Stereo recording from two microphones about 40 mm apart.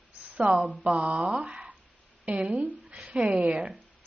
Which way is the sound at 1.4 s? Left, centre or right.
Right.